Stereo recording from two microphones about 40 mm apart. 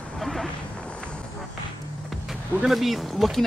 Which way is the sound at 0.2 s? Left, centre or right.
Centre.